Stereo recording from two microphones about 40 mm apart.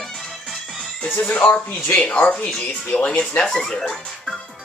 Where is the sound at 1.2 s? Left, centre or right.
Left.